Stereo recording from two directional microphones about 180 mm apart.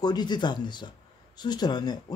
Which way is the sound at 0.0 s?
25° left (ahead or behind).